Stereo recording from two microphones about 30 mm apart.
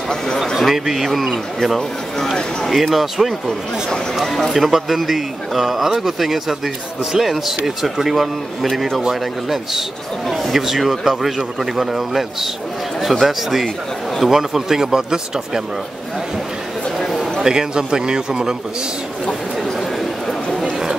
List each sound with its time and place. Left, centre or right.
0.6 s a man's voice: centre
4.6 s a man's voice: centre; by 15.6 s right
17.4 s a man's voice: right